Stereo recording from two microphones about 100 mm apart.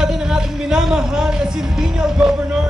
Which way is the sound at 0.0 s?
5° right (ahead or behind).